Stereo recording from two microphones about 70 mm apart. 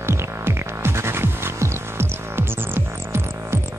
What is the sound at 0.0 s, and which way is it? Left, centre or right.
Music, right.